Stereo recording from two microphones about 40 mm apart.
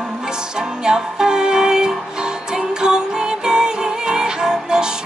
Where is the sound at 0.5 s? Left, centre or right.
Centre.